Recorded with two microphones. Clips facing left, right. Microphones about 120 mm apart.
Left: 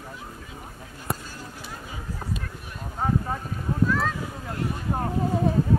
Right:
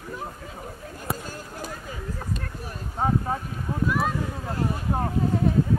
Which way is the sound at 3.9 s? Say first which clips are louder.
Even; 15° right (ahead or behind).